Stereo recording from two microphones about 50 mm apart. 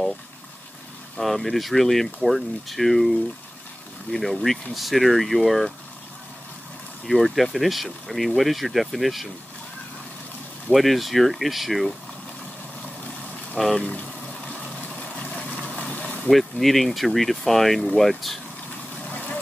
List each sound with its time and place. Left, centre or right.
1.2 s speech: centre
7.1 s speech: centre
10.7 s speech: centre
13.7 s speech: left
15.9 s vehicle: left
16.3 s speech: centre